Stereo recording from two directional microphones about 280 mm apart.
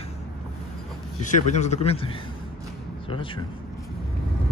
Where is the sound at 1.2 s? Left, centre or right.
Left.